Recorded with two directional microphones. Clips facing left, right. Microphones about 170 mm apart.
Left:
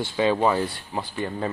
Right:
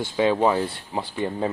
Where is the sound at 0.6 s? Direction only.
20° right (ahead or behind).